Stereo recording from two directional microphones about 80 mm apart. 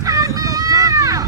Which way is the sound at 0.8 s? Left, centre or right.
Right.